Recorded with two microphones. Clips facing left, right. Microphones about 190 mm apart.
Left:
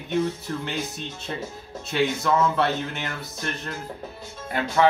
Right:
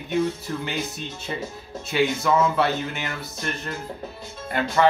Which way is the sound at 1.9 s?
5° right (ahead or behind).